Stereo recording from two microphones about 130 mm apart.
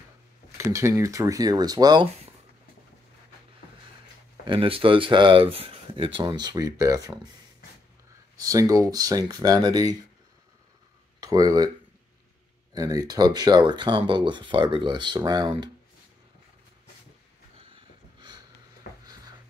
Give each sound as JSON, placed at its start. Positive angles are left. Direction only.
{"t": 0.6, "sound": "speech", "side_deg": -20}
{"t": 4.5, "sound": "speech", "side_deg": -45}
{"t": 8.5, "sound": "speech", "side_deg": -25}
{"t": 11.1, "sound": "speech", "side_deg": -30}
{"t": 12.7, "sound": "speech", "side_deg": -30}